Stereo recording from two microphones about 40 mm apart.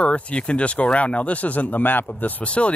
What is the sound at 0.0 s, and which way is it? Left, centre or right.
Speech, left.